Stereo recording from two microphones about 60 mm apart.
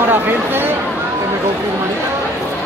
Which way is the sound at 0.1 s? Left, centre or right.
Right.